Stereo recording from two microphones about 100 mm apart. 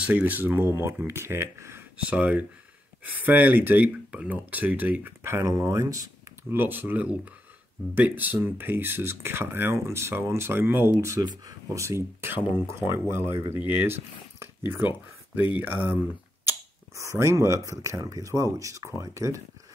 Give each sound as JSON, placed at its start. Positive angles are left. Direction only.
{"t": 0.0, "sound": "speech", "side_deg": -15}
{"t": 2.0, "sound": "speech", "side_deg": -15}
{"t": 6.5, "sound": "speech", "side_deg": -20}
{"t": 15.5, "sound": "speech", "side_deg": -20}
{"t": 16.4, "sound": "speech", "side_deg": -30}